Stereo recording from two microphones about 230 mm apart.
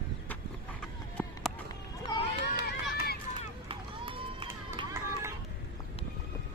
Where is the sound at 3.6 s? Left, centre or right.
Right.